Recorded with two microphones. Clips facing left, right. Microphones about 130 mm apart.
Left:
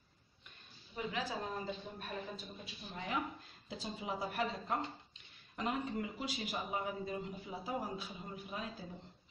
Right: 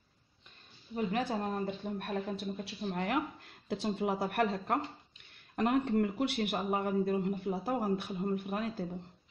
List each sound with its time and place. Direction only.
0.9 s a man's voice: 55° right (ahead or behind)